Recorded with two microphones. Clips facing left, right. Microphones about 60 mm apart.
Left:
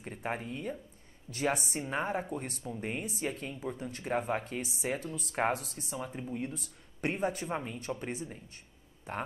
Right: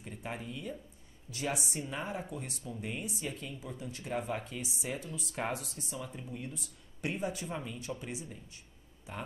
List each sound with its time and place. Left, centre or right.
0.0 s speech: left
5.9 s speech: left
7.4 s speech: left